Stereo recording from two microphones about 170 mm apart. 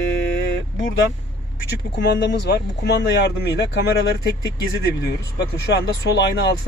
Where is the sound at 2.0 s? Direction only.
90° left.